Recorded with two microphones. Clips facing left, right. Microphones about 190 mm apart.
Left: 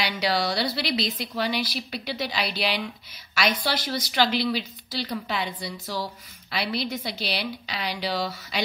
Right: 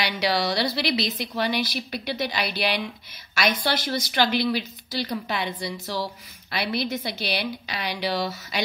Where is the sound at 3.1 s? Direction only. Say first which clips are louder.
Right 1 dB; 50° right (ahead or behind).